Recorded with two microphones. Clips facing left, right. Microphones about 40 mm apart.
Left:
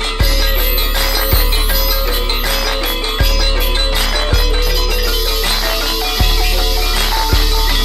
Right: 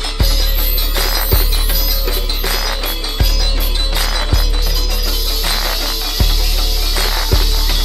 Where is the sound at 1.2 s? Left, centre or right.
Centre.